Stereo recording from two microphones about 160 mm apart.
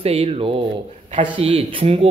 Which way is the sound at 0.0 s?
40° right (ahead or behind).